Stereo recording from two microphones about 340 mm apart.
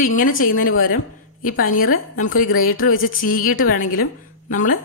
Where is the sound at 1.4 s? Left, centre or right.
Left.